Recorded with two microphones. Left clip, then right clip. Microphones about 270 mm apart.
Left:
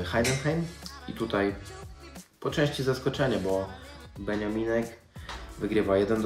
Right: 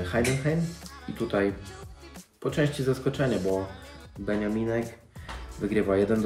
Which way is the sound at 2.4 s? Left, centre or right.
Centre.